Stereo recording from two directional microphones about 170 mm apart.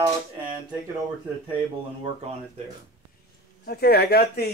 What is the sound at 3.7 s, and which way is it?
Speech, 70° left (ahead or behind).